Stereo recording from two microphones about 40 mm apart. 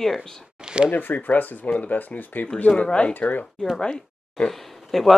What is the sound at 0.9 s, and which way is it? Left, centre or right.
Speech, left.